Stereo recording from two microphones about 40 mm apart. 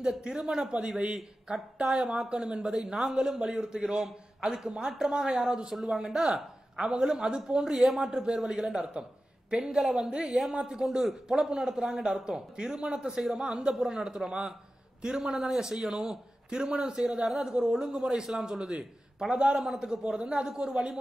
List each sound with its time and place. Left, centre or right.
0.2 s a man's voice: centre
7.7 s speech: centre
8.0 s a man's voice: centre
9.5 s a man's voice: right
9.8 s a man's voice: centre
10.0 s a man's voice: right
13.1 s a man's voice: centre
13.4 s a man's voice: centre
17.0 s a man's voice: centre